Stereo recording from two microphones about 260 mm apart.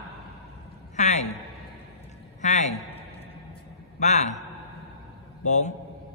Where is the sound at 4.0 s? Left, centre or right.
Left.